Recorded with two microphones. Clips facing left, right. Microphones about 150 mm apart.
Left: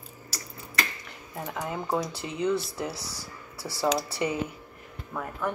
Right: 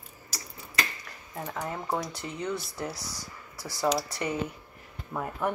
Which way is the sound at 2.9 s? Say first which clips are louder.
Left 2 dB; 30° left (ahead or behind).